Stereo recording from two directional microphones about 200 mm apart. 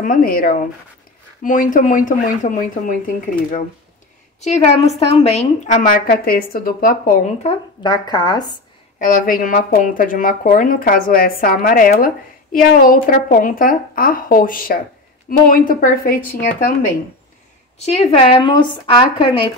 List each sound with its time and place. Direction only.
0.0 s a woman's voice: 45° left (ahead or behind)
7.4 s speech: 20° left (ahead or behind)
9.0 s speech: 45° left (ahead or behind)
18.1 s speech: 30° left (ahead or behind)